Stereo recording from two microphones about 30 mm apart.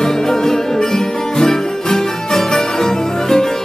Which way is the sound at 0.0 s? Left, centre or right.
Centre.